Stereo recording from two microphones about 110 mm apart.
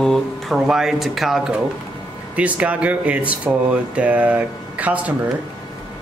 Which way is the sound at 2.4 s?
15° right (ahead or behind).